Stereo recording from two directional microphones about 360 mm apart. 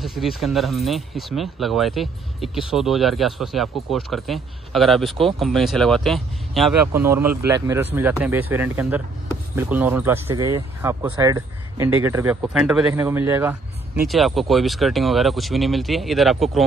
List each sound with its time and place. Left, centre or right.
0.0 s speech: centre